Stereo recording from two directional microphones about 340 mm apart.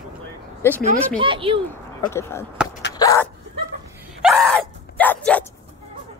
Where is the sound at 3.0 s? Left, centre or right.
Centre.